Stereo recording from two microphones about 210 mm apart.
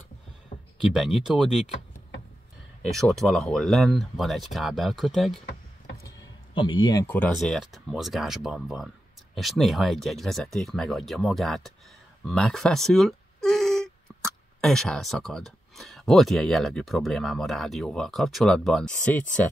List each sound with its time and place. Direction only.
0.9 s speech: centre (ahead or behind)
2.8 s speech: centre (ahead or behind)
6.0 s a sound: 25° left (ahead or behind)
7.1 s speech: 5° left (ahead or behind)